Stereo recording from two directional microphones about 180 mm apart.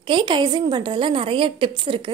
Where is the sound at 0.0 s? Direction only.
25° right (ahead or behind).